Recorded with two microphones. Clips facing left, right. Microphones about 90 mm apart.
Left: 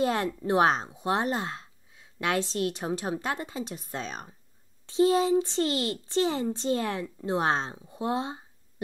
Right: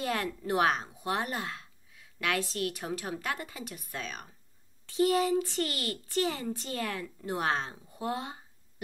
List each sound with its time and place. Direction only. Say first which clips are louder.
0.0 s a woman's voice: left 6 dB; 25° left (ahead or behind)